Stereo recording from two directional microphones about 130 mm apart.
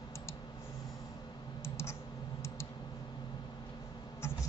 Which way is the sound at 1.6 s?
20° left (ahead or behind).